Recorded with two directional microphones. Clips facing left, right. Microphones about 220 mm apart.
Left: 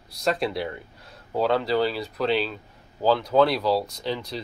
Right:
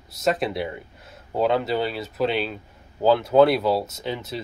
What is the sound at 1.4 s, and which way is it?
Speech, centre (ahead or behind).